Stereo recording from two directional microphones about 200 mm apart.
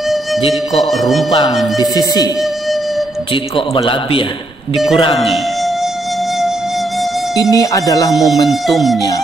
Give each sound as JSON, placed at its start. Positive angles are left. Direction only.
{"t": 0.5, "sound": "speech", "side_deg": 0}
{"t": 1.8, "sound": "a man's voice", "side_deg": 20}
{"t": 3.5, "sound": "a man's voice", "side_deg": 25}
{"t": 7.5, "sound": "speech", "side_deg": 15}
{"t": 8.1, "sound": "speech", "side_deg": 0}